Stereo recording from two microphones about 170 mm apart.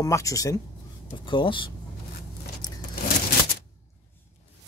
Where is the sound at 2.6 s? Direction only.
25° left (ahead or behind).